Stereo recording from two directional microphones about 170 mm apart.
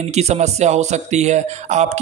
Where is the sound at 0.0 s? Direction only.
40° right (ahead or behind).